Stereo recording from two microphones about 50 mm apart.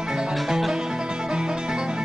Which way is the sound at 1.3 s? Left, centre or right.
Centre.